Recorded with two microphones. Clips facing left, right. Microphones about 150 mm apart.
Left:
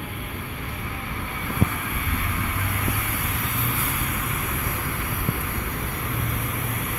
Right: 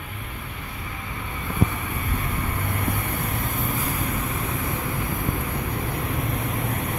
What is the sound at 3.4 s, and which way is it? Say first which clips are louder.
Vehicle: right 2 dB; 45° right (ahead or behind).